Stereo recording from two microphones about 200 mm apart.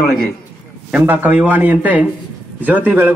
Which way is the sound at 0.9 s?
10° right (ahead or behind).